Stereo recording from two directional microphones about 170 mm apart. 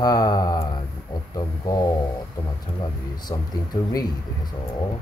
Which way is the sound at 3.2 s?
25° left (ahead or behind).